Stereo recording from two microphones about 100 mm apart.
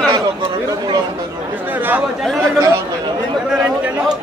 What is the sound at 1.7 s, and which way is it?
Speech, 20° right (ahead or behind).